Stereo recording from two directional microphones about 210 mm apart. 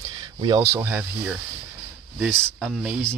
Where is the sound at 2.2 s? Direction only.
5° left (ahead or behind).